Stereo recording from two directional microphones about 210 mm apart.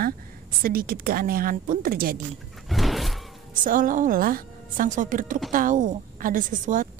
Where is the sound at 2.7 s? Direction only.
Centre (ahead or behind).